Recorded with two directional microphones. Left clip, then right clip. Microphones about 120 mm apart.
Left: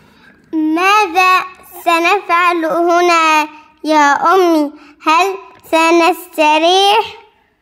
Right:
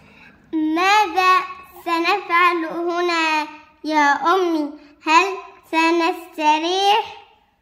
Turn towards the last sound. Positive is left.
turn(degrees=75)  # may be behind; listen again after turning